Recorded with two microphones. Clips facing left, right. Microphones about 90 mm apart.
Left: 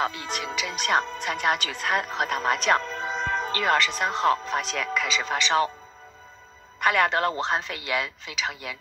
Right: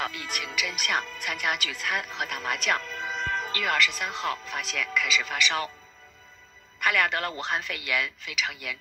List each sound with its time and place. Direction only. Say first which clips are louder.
0.0 s speech: left 5 dB; 25° left (ahead or behind)
6.8 s speech: left 4 dB; 30° left (ahead or behind)